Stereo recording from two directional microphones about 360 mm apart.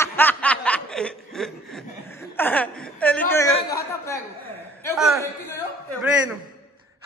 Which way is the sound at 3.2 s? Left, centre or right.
Centre.